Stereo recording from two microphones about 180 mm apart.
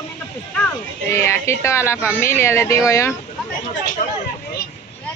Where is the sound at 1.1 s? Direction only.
15° left (ahead or behind).